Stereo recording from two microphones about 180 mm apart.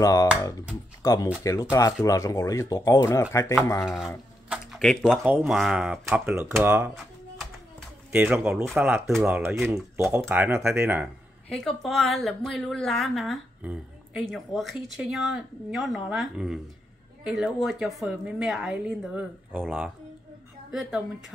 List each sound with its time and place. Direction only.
0.0 s speech: 20° left (ahead or behind)
3.8 s a woman's voice: centre (ahead or behind)
4.5 s a sound: centre (ahead or behind)
5.3 s speech: centre (ahead or behind)
8.1 s a woman's voice: 10° right (ahead or behind)
11.4 s a woman's voice: 5° left (ahead or behind)